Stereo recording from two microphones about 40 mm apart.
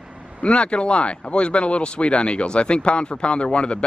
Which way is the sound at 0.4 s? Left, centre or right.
Left.